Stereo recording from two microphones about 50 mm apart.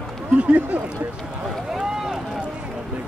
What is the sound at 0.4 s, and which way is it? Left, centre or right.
Speech, right.